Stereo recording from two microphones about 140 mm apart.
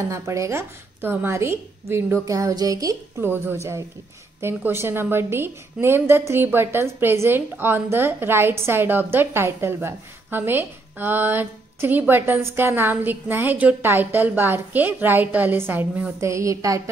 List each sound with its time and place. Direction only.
0.1 s a woman's voice: 20° right (ahead or behind)